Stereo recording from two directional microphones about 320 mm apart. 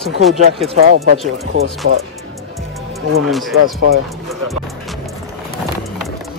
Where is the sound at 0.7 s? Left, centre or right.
Right.